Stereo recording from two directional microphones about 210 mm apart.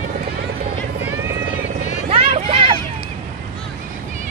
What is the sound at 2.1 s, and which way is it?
Vehicle, 30° right (ahead or behind).